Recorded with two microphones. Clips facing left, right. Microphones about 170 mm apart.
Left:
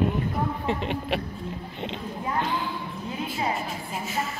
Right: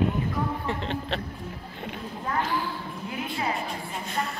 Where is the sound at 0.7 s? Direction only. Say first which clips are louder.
Left 3 dB; 15° left (ahead or behind).